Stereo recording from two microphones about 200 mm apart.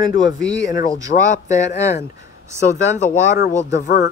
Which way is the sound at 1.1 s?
40° left (ahead or behind).